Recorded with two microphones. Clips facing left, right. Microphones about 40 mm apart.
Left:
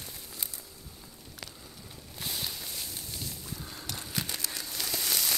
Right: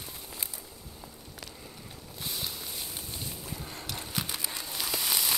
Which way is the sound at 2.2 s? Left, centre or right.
Centre.